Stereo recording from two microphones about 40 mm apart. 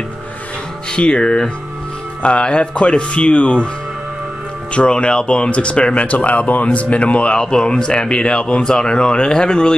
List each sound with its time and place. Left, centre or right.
0.9 s speech: left
4.7 s speech: left